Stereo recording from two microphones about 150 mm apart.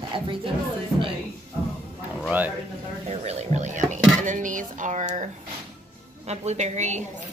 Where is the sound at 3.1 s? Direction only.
45° right (ahead or behind).